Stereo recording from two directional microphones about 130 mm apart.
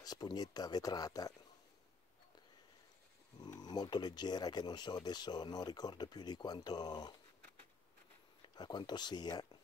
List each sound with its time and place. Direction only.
0.0 s speech: 30° left (ahead or behind)
3.3 s speech: 30° left (ahead or behind)
8.5 s speech: 35° left (ahead or behind)